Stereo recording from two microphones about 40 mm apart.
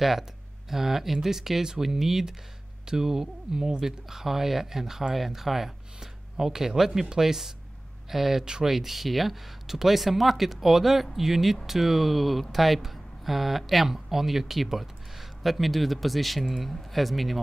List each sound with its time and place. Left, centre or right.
0.7 s speech: centre
8.7 s speech: centre